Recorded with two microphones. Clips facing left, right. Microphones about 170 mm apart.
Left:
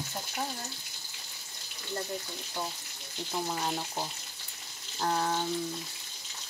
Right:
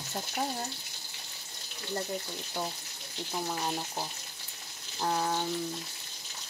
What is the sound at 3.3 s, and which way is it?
Speech, centre (ahead or behind).